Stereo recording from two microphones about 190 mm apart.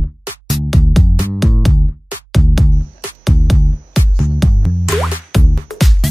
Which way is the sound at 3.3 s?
Centre (ahead or behind).